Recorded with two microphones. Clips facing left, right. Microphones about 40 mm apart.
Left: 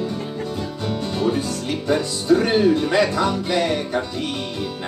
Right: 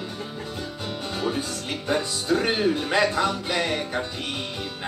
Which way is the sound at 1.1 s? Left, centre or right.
Centre.